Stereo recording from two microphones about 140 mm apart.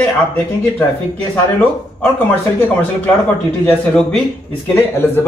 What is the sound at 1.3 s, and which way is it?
Speech, 10° left (ahead or behind).